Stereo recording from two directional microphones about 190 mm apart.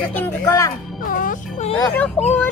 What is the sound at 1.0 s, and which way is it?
Speech, 45° left (ahead or behind).